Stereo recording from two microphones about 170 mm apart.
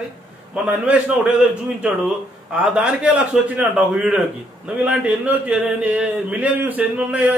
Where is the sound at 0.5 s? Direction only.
5° right (ahead or behind).